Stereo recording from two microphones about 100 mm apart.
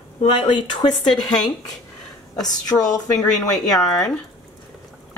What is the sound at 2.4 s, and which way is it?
A woman's voice, 40° left (ahead or behind).